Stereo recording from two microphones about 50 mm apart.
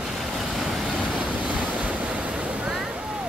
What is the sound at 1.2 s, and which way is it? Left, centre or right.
Waves, right.